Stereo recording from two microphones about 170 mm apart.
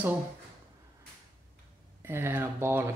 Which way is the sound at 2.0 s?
15° right (ahead or behind).